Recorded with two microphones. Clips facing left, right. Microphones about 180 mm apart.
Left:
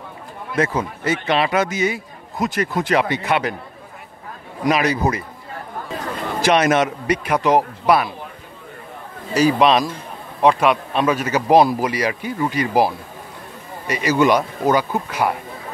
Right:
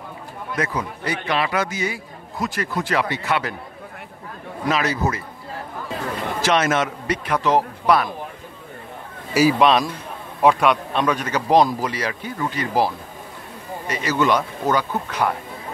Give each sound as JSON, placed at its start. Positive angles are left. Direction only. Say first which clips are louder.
{"t": 0.6, "sound": "a man's voice", "louder": "left 5 dB", "side_deg": 25}
{"t": 4.6, "sound": "a man's voice", "louder": "left 4 dB", "side_deg": 15}
{"t": 6.4, "sound": "a man's voice", "louder": "left 4 dB", "side_deg": 15}
{"t": 9.3, "sound": "a man's voice", "louder": "left 1 dB", "side_deg": -5}